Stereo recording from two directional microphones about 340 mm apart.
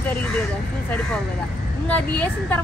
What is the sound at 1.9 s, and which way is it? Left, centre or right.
Speech, centre.